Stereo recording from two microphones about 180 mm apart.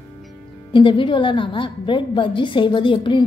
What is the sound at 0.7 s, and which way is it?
A woman's voice, 30° left (ahead or behind).